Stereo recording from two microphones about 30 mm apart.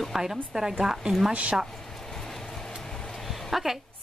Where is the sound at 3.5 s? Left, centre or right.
Centre.